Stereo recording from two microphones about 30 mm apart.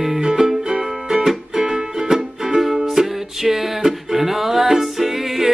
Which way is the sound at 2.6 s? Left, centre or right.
Centre.